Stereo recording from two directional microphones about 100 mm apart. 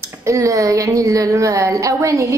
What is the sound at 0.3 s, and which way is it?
A woman's voice, 30° right (ahead or behind).